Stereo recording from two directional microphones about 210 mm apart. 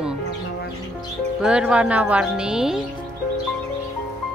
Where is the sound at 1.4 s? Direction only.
5° right (ahead or behind).